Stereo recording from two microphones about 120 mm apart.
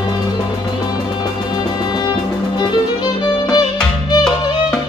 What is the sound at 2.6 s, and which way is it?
Music, 40° left (ahead or behind).